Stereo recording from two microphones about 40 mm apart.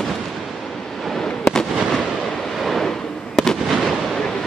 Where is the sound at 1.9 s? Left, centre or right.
Centre.